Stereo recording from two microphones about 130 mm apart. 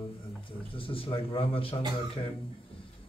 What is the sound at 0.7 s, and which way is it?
A man's voice, 45° left (ahead or behind).